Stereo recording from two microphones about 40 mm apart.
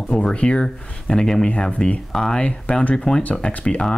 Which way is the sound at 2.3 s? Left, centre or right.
Left.